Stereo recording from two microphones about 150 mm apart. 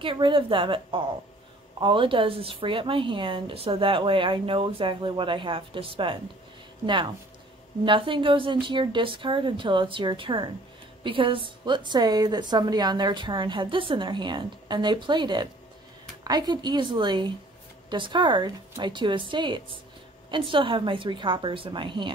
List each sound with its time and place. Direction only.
0.0 s a woman's voice: 35° right (ahead or behind)
7.8 s a woman's voice: 35° right (ahead or behind)